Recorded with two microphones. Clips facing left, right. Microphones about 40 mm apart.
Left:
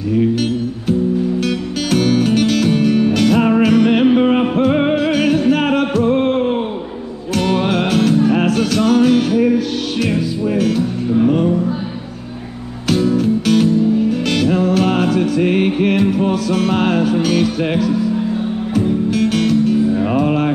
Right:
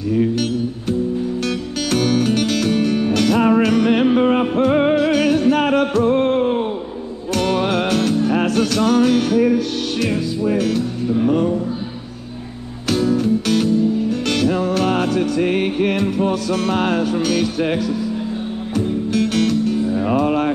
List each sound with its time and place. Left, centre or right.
1.4 s music: centre
12.9 s music: centre